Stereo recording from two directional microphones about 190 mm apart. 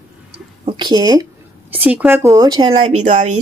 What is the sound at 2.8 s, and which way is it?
Speech, 35° right (ahead or behind).